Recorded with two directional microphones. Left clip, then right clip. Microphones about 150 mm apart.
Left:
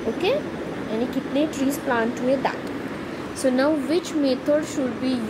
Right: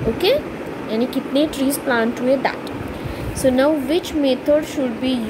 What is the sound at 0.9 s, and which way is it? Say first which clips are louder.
Speech: right 5 dB; 45° right (ahead or behind).